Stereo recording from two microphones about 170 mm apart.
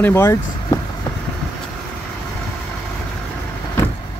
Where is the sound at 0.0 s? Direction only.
15° left (ahead or behind).